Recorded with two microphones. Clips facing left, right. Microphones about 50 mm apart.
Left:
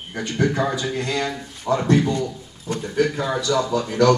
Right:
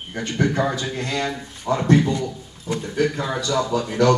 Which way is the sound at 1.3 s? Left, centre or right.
Centre.